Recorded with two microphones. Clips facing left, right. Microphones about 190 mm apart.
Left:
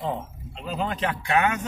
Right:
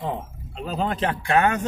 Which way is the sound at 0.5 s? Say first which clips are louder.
Right 3 dB; 40° right (ahead or behind).